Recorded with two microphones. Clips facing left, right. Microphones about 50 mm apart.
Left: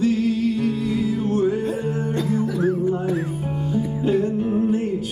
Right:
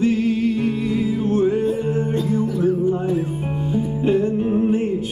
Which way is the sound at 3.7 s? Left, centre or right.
Right.